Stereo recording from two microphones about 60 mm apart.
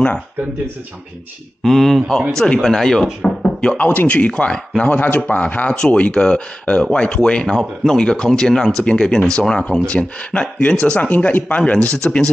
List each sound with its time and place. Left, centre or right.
1.6 s speech: centre
3.7 s speech: left
4.4 s speech: centre